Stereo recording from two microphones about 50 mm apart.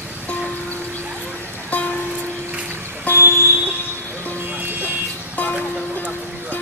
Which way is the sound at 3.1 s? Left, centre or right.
Left.